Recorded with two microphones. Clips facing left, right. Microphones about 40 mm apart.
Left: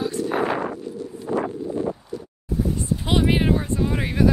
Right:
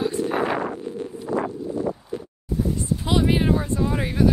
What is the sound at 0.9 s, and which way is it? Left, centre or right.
Wind noise, right.